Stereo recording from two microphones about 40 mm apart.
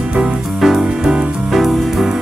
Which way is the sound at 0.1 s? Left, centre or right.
Right.